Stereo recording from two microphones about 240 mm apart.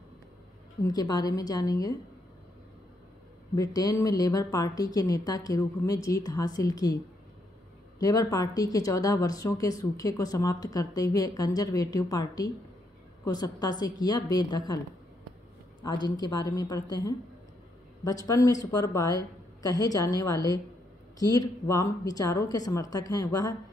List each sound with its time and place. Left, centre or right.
0.8 s speech: centre
3.5 s speech: centre
8.0 s speech: centre
15.8 s speech: centre